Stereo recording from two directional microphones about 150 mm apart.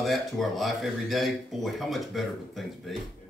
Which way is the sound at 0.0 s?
Centre (ahead or behind).